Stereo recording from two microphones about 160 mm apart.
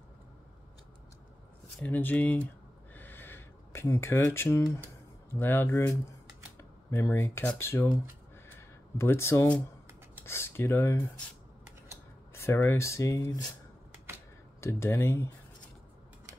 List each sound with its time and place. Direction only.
1.8 s speech: 10° left (ahead or behind)
2.9 s a sound: 10° left (ahead or behind)
5.3 s speech: 15° left (ahead or behind)
8.5 s a sound: 15° left (ahead or behind)
10.2 s speech: 15° left (ahead or behind)
12.4 s speech: 15° left (ahead or behind)
14.6 s speech: 15° left (ahead or behind)